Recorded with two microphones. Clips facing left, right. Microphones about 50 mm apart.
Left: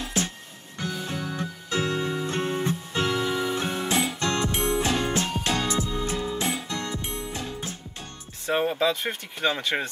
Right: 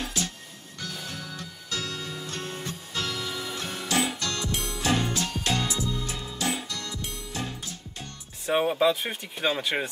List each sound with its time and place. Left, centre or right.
0.2 s music: left
8.5 s speech: centre